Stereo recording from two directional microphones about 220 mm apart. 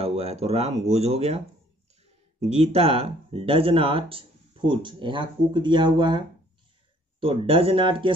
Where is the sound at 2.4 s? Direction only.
25° right (ahead or behind).